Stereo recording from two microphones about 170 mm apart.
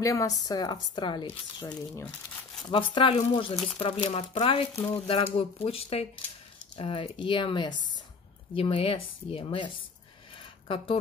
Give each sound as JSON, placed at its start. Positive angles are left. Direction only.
{"t": 0.0, "sound": "a woman's voice", "side_deg": 20}
{"t": 1.6, "sound": "speech", "side_deg": 10}
{"t": 2.7, "sound": "a woman's voice", "side_deg": 30}